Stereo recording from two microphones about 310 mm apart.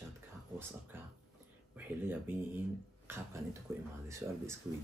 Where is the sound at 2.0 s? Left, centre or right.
Centre.